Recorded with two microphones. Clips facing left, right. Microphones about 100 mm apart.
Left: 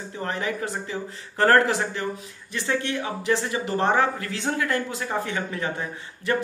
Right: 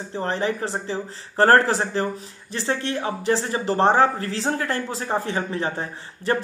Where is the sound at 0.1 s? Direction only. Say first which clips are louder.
Right 4 dB; 30° right (ahead or behind).